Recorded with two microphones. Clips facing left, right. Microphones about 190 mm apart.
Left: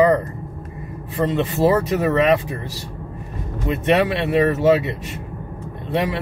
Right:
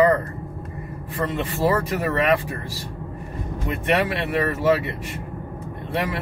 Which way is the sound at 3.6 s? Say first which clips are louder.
Left 4 dB; 20° left (ahead or behind).